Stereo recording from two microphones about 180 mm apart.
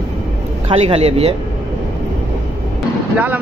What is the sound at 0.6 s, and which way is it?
Speech, 35° right (ahead or behind).